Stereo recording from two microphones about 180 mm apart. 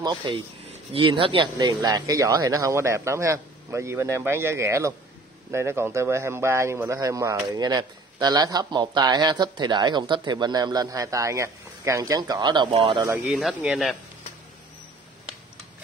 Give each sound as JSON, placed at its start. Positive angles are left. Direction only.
{"t": 0.0, "sound": "a man's voice", "side_deg": -25}
{"t": 13.2, "sound": "speech", "side_deg": 0}